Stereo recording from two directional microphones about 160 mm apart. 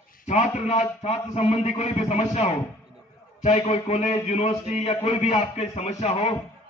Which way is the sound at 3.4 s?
40° left (ahead or behind).